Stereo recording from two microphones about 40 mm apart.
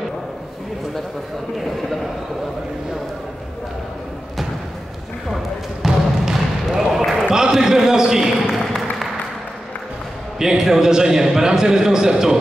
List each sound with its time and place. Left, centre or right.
5.3 s basketball bounce: centre
7.2 s a sound: centre
10.4 s a man's voice: centre